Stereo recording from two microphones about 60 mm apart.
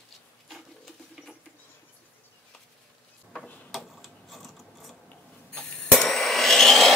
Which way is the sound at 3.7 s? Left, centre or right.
Centre.